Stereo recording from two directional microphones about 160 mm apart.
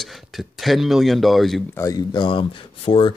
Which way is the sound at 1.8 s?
25° left (ahead or behind).